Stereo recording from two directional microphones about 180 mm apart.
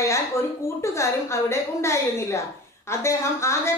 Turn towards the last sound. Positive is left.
turn(degrees=15)  # may be behind; listen again after turning